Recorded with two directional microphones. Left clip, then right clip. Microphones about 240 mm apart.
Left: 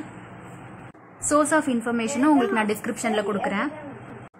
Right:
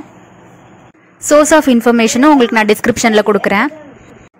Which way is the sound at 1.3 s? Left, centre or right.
Right.